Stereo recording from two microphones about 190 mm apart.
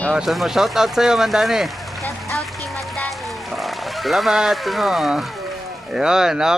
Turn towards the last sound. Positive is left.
turn(degrees=-5)  # may be behind; listen again after turning